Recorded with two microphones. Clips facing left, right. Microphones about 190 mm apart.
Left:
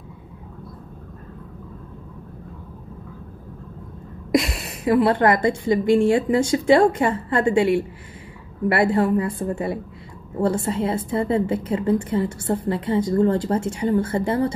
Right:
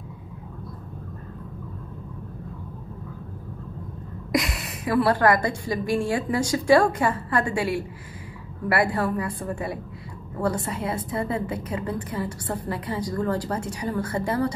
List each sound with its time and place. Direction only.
4.3 s a woman's voice: 30° left (ahead or behind)